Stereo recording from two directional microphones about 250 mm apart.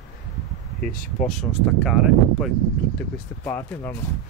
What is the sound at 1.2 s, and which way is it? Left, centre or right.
Speech, centre.